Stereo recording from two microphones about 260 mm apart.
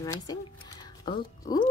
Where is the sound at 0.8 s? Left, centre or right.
Centre.